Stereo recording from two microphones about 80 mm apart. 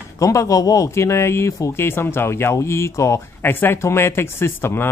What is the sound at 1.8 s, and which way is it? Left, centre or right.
Speech, left.